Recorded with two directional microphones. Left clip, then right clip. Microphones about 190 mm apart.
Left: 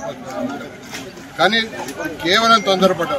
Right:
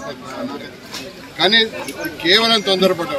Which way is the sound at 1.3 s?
10° left (ahead or behind).